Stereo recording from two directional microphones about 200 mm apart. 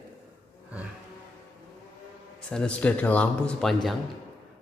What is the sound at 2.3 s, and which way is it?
Speech, 5° left (ahead or behind).